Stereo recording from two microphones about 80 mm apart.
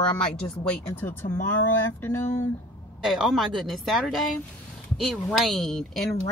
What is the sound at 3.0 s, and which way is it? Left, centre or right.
Speech, centre.